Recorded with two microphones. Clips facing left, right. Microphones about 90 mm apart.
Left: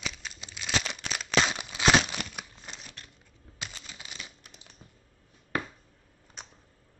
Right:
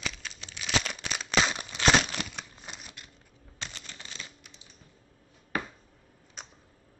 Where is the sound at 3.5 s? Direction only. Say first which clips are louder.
Even; 10° left (ahead or behind).